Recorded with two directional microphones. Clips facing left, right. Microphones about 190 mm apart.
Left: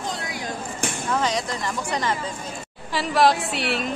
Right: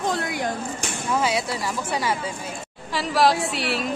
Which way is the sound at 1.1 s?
10° right (ahead or behind).